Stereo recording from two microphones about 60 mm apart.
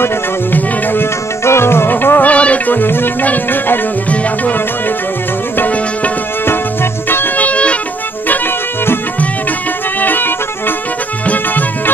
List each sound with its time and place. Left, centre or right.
0.0 s music: left
1.4 s music: left
2.3 s music: left
6.4 s music: left
7.3 s music: left
9.9 s music: left